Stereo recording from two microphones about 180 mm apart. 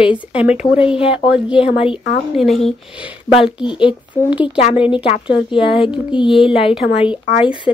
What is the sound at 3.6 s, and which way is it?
Speech, 25° left (ahead or behind).